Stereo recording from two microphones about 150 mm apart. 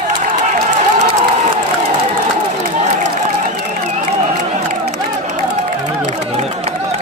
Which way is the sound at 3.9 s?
50° right (ahead or behind).